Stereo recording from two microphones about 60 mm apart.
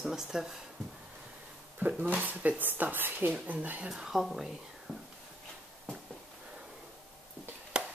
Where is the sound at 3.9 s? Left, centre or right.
Centre.